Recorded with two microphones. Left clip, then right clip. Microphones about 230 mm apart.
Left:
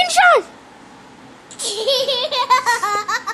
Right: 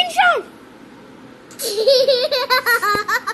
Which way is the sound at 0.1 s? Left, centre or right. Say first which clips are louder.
Left 5 dB; centre.